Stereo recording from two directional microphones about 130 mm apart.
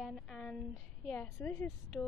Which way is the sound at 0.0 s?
Centre (ahead or behind).